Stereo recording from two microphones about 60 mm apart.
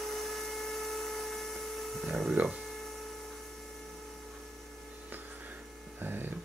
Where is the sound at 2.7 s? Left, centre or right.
Centre.